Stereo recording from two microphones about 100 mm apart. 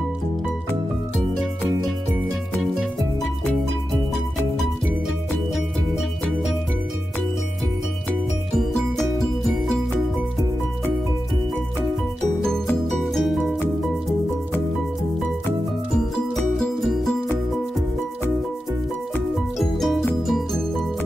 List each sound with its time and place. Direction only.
2.6 s music: centre (ahead or behind)
12.9 s music: centre (ahead or behind)
16.5 s music: centre (ahead or behind)
19.6 s music: centre (ahead or behind)